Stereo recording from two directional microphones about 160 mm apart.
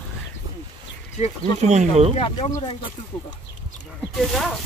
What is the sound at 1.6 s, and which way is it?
Speech, 45° right (ahead or behind).